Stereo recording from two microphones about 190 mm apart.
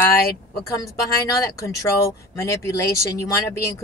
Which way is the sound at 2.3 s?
15° left (ahead or behind).